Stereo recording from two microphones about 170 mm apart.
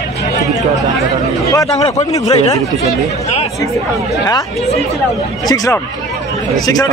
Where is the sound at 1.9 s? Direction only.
20° left (ahead or behind).